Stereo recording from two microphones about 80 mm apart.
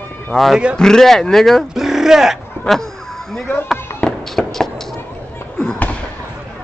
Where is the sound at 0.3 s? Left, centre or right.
Centre.